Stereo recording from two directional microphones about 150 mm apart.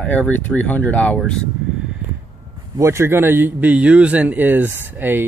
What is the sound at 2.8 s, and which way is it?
Speech, 20° right (ahead or behind).